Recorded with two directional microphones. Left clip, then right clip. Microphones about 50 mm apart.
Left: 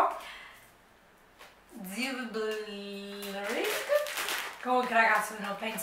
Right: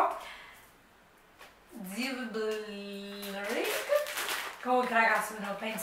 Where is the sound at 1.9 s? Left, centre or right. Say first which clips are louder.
Left 1 dB; left.